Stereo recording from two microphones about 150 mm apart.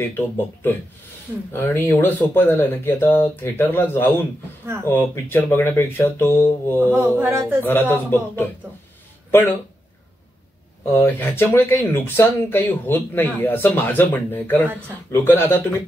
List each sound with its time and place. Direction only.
1.5 s speech: 15° left (ahead or behind)
6.9 s speech: 15° right (ahead or behind)
7.6 s speech: 15° left (ahead or behind)
10.9 s speech: 15° left (ahead or behind)